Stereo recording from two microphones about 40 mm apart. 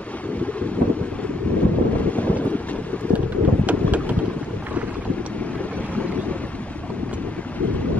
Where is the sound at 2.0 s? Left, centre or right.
Left.